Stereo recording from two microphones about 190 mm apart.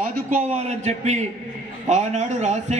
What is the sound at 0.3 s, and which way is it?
A man's voice, 35° right (ahead or behind).